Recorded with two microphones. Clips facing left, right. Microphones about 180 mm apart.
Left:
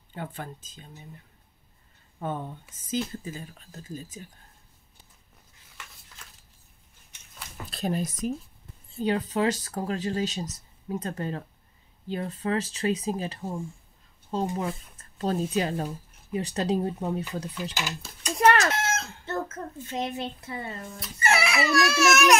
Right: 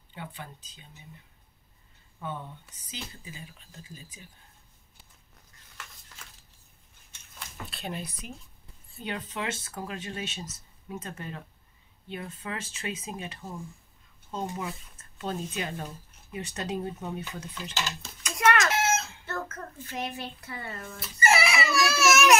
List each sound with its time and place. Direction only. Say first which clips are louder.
0.1 s speech: left 5 dB; 45° left (ahead or behind)
2.1 s speech: left 5 dB; 45° left (ahead or behind)
7.7 s speech: left 9 dB; 40° left (ahead or behind)
17.7 s speech: left 1 dB; 10° left (ahead or behind)
18.2 s chicken: left 4 dB; 35° left (ahead or behind)
18.7 s chicken: right 2 dB; 5° right (ahead or behind)
19.2 s a child's voice: left 4 dB; 25° left (ahead or behind)
21.0 s speech: right 1 dB; centre (ahead or behind)